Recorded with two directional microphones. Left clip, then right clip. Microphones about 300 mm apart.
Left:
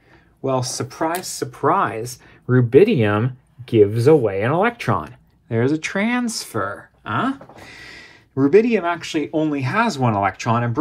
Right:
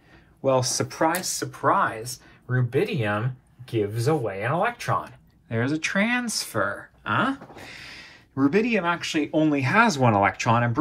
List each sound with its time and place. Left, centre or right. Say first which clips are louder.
0.4 s speech: even; centre